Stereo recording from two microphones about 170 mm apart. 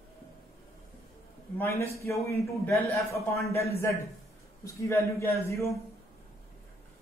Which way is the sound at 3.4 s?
15° left (ahead or behind).